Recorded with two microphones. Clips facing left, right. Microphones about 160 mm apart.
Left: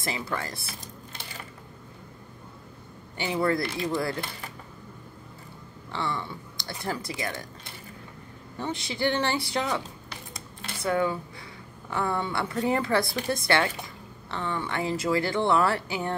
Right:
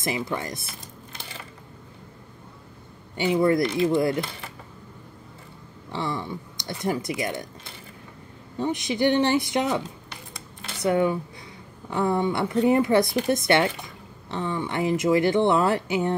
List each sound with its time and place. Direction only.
0.3 s speech: 20° right (ahead or behind)
3.2 s speech: 20° right (ahead or behind)
5.9 s speech: 15° right (ahead or behind)
8.5 s speech: 20° right (ahead or behind)
10.8 s speech: 20° right (ahead or behind)